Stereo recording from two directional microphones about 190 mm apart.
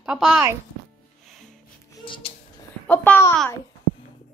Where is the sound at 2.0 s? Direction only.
25° left (ahead or behind).